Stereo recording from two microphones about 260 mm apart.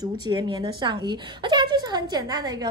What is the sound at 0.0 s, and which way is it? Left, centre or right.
A woman's voice, centre.